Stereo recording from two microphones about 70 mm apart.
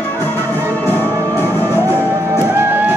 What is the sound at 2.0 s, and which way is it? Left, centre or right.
Music, right.